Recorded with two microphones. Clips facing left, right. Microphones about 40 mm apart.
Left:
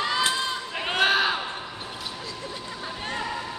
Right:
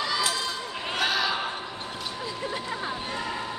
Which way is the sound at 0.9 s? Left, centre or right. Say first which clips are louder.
Left 4 dB; left.